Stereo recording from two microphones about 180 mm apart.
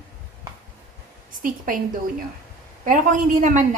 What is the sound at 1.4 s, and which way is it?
Speech, 50° right (ahead or behind).